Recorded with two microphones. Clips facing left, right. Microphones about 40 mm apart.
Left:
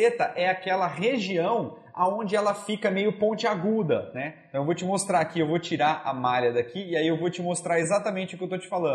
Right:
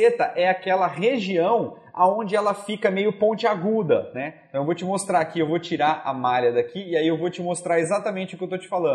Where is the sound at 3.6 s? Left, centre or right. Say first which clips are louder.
Right 4 dB; right.